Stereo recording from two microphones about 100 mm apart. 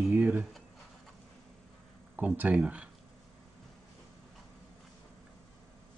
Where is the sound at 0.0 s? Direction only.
20° right (ahead or behind).